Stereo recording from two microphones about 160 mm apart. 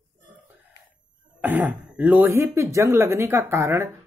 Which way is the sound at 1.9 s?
10° right (ahead or behind).